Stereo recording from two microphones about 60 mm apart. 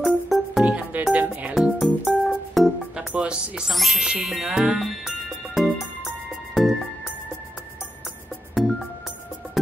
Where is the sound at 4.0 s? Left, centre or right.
Centre.